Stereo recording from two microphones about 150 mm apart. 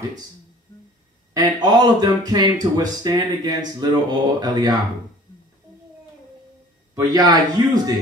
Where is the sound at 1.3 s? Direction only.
25° right (ahead or behind).